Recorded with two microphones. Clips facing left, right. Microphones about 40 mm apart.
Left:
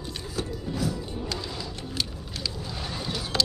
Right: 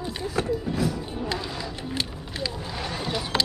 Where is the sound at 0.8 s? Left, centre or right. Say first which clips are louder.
Right 3 dB; right.